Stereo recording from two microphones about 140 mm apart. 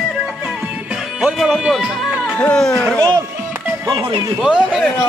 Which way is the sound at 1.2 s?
5° right (ahead or behind).